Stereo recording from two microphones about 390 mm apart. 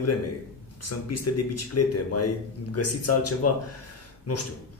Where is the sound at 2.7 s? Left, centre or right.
Left.